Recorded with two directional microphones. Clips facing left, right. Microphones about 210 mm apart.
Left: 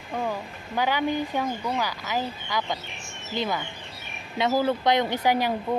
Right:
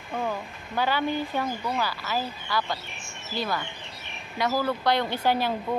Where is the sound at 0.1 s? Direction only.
10° left (ahead or behind).